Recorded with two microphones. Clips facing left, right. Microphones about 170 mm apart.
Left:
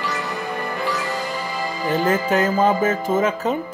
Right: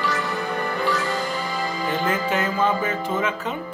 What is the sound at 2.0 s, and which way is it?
Speech, 40° left (ahead or behind).